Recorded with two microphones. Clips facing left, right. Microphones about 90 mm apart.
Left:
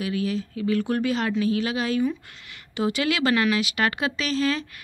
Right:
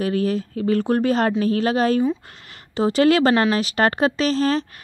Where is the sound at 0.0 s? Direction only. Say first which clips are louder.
Right 5 dB; 40° right (ahead or behind).